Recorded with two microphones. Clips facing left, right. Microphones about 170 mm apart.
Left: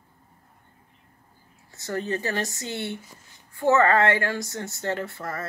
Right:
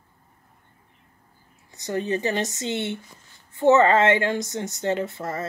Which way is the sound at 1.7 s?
20° right (ahead or behind).